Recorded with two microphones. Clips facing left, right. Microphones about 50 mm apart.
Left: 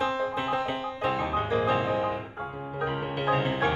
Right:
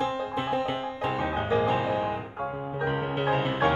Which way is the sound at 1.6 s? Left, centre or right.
Left.